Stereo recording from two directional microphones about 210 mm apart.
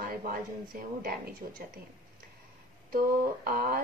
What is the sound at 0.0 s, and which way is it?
A woman's voice, 45° right (ahead or behind).